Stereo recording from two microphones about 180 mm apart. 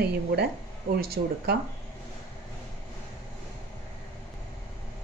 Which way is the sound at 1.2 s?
55° right (ahead or behind).